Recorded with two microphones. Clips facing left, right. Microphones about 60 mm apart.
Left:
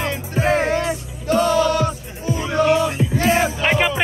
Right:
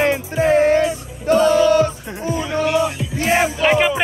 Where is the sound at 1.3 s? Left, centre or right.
Right.